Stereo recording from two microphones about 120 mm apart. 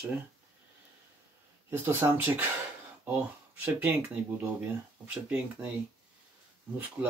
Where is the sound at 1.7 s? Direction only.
20° right (ahead or behind).